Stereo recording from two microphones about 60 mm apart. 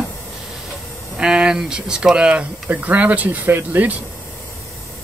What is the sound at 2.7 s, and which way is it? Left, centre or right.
Speech, right.